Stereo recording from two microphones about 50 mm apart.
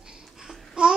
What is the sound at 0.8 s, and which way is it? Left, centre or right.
Babbling, centre.